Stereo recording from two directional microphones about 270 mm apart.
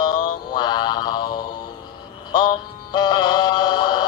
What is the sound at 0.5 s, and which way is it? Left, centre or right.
Mantra, centre.